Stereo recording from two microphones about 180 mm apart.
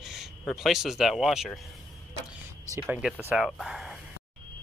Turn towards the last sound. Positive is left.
turn(degrees=0)  # may be behind; listen again after turning